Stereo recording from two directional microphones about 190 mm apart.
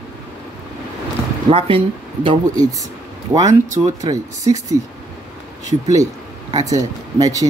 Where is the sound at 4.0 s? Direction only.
15° right (ahead or behind).